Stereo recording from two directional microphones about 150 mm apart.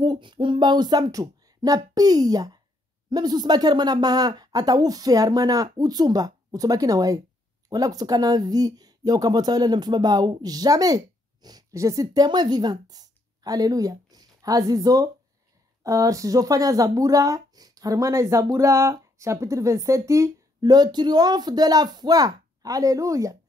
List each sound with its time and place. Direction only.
0.0 s speech: 30° right (ahead or behind)